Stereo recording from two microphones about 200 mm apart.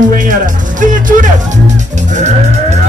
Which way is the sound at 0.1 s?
40° right (ahead or behind).